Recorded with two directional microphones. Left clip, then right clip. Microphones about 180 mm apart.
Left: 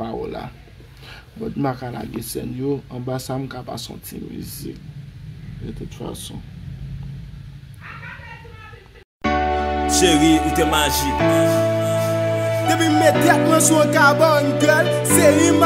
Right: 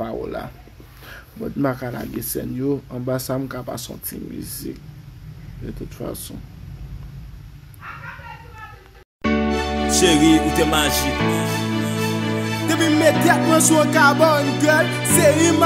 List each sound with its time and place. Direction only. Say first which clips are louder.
0.0 s a sound: right 1 dB; 10° right (ahead or behind)
1.6 s speech: right 2 dB; 10° right (ahead or behind)
5.9 s speech: right 2 dB; 10° right (ahead or behind)
9.2 s music: left 2 dB; centre (ahead or behind)